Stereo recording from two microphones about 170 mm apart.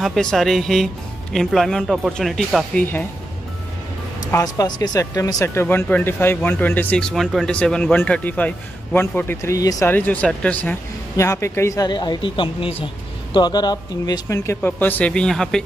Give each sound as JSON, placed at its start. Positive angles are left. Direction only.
{"t": 0.0, "sound": "speech", "side_deg": 0}
{"t": 4.3, "sound": "speech", "side_deg": 20}